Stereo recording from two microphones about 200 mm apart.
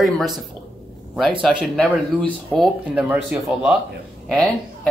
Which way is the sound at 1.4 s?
5° left (ahead or behind).